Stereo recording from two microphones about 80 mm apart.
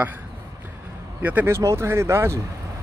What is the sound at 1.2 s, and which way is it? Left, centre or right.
Speech, right.